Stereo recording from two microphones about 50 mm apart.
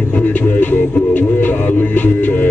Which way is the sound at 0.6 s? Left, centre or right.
Left.